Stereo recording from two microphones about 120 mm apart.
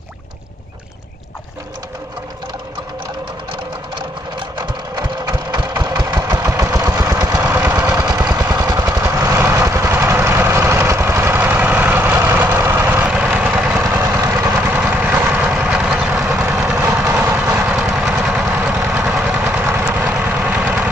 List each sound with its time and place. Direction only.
4.9 s engine: 35° right (ahead or behind)
7.4 s vehicle: 15° right (ahead or behind)
7.9 s vehicle: 30° right (ahead or behind); by 13.7 s 10° right (ahead or behind)
13.7 s vehicle: 25° right (ahead or behind)